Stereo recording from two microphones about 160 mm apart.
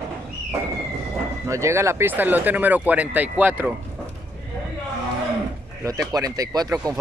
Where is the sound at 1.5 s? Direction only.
20° right (ahead or behind).